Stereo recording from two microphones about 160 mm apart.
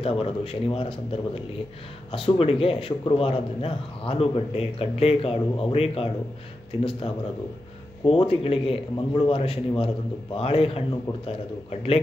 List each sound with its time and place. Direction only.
0.0 s a man's voice: 35° left (ahead or behind)